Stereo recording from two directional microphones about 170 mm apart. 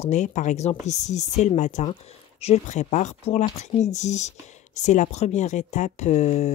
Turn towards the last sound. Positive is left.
turn(degrees=40)  # may be behind; listen again after turning